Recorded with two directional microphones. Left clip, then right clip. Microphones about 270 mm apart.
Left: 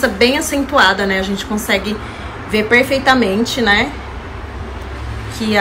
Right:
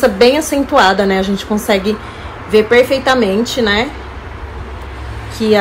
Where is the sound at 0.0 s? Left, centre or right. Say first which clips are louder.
Right 4 dB; centre.